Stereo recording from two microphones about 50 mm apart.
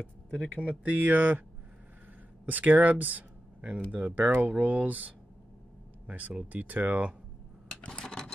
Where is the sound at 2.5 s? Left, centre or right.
Right.